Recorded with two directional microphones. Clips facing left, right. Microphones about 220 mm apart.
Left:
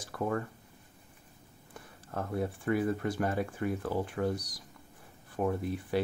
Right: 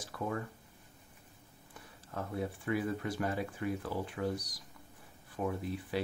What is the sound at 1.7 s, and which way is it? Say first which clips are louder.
Speech: left 4 dB; 50° left (ahead or behind).